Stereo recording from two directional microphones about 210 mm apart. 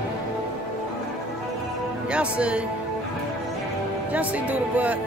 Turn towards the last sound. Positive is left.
turn(degrees=-5)  # may be behind; listen again after turning